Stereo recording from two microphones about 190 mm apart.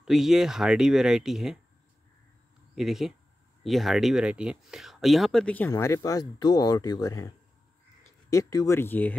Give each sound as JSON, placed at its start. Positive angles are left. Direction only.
{"t": 0.0, "sound": "speech", "side_deg": 0}
{"t": 2.7, "sound": "speech", "side_deg": 0}